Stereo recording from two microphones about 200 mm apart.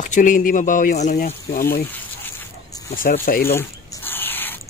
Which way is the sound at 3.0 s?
45° left (ahead or behind).